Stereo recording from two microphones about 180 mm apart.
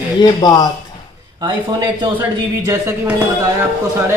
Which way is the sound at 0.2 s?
25° left (ahead or behind).